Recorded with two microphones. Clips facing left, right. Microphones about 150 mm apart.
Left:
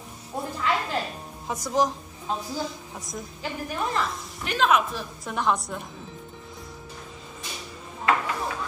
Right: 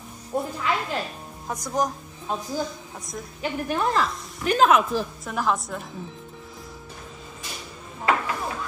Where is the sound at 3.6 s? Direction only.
90° right.